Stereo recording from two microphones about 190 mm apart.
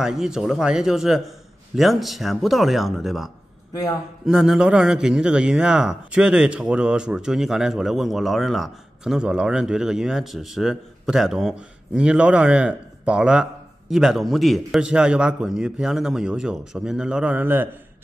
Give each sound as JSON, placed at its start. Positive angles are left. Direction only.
{"t": 0.0, "sound": "a man's voice", "side_deg": -5}
{"t": 4.3, "sound": "a man's voice", "side_deg": -5}